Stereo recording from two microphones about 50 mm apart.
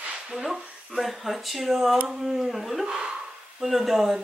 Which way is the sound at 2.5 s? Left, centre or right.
Centre.